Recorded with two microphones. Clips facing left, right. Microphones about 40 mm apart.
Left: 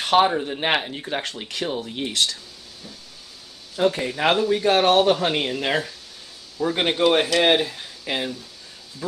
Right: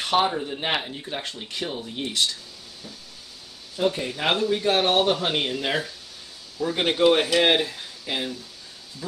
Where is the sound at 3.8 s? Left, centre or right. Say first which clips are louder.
Left 4 dB; left.